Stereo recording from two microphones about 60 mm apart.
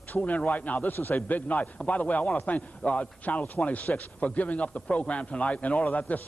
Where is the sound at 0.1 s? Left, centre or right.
Left.